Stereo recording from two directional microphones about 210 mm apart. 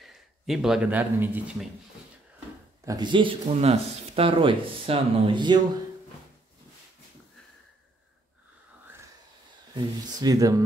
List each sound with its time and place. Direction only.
0.0 s a man's voice: centre (ahead or behind)
2.8 s speech: 20° right (ahead or behind)
9.8 s speech: 20° right (ahead or behind)